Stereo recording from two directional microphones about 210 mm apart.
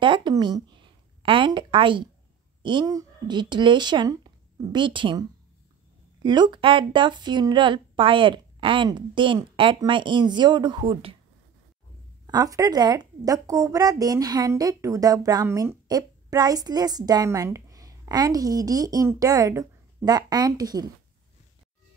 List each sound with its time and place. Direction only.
0.0 s a sound: 20° right (ahead or behind)
2.6 s speech: 20° right (ahead or behind)
6.2 s a woman's voice: 20° right (ahead or behind)
12.3 s a woman's voice: 15° right (ahead or behind)